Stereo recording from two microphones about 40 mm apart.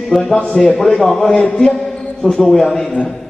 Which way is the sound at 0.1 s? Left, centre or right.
Centre.